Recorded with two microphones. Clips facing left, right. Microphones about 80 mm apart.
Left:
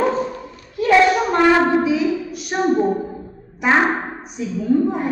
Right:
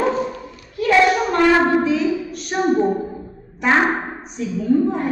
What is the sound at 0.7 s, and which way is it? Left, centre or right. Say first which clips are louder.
Child singing: left 1 dB; left.